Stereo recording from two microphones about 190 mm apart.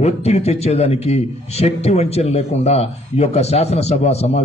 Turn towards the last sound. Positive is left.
turn(degrees=35)  # may be behind; listen again after turning